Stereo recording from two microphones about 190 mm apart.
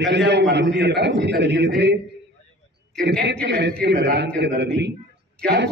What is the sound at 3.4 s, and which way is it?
A man's voice, 65° right (ahead or behind).